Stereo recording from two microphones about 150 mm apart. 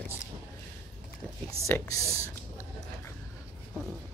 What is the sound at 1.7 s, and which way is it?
Speech, 20° left (ahead or behind).